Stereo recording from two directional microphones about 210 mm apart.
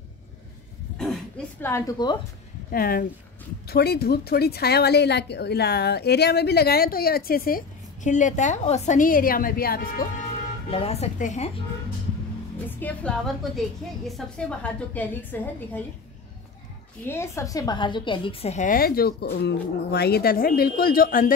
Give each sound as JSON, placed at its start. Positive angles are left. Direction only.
{"t": 0.9, "sound": "a sound", "side_deg": 0}
{"t": 1.7, "sound": "a woman's voice", "side_deg": 15}
{"t": 2.7, "sound": "a woman's voice", "side_deg": 45}
{"t": 10.7, "sound": "speech", "side_deg": 30}
{"t": 12.5, "sound": "a woman's voice", "side_deg": 5}
{"t": 17.1, "sound": "a woman's voice", "side_deg": 15}